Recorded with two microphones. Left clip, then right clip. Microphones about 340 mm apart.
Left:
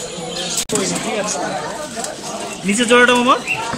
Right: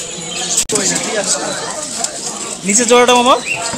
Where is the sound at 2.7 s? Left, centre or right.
Centre.